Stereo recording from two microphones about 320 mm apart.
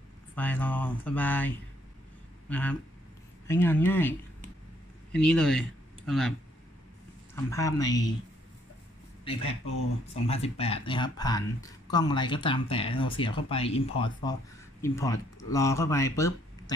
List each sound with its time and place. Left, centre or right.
0.4 s speech: centre
2.5 s speech: centre
5.1 s speech: centre
7.3 s speech: centre
9.2 s speech: centre